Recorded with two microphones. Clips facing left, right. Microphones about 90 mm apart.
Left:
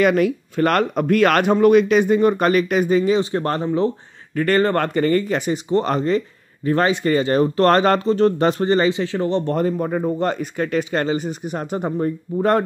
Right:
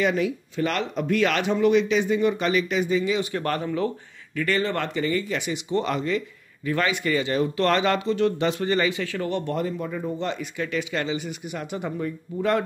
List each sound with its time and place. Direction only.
0.0 s speech: 60° left (ahead or behind)
3.2 s speech: 30° left (ahead or behind)
4.4 s speech: 45° left (ahead or behind); by 9.4 s 25° left (ahead or behind)
9.5 s speech: 45° left (ahead or behind)